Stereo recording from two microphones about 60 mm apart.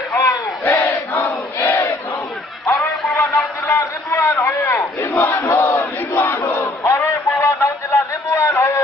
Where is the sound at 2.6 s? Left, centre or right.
Left.